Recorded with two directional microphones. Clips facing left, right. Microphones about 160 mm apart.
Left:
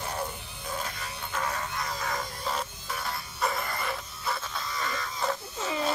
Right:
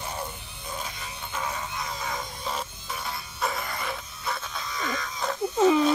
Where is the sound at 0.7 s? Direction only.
Centre (ahead or behind).